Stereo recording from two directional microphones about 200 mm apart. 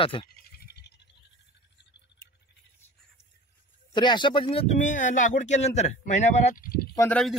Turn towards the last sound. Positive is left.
turn(degrees=5)  # may be behind; listen again after turning